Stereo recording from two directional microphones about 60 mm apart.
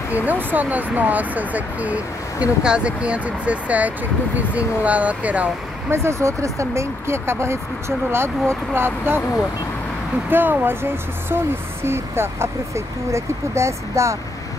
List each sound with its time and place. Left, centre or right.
0.1 s speech: right
5.9 s speech: right
10.3 s speech: right